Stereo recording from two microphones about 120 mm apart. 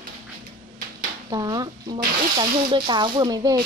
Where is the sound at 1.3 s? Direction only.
35° right (ahead or behind).